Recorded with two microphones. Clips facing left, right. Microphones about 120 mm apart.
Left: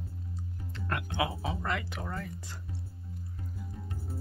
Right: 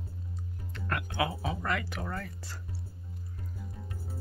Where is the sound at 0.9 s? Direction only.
20° left (ahead or behind).